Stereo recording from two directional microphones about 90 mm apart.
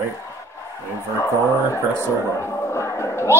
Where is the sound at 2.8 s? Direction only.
30° left (ahead or behind).